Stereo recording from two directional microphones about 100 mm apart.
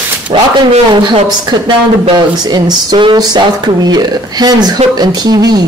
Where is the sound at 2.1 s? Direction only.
45° right (ahead or behind).